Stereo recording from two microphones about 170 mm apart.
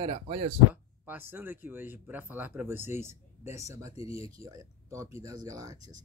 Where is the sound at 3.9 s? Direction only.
35° left (ahead or behind).